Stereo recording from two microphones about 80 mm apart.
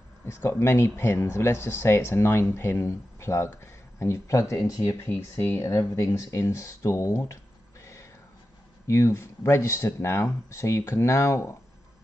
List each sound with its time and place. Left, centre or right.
0.3 s speech: left
7.8 s a sound: left
8.8 s speech: left